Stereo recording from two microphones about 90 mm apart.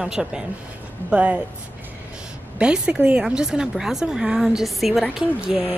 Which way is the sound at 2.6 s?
10° right (ahead or behind).